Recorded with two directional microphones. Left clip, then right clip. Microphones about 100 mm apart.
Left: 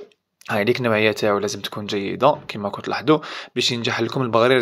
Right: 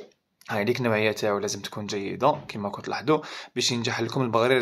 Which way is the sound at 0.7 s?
35° left (ahead or behind).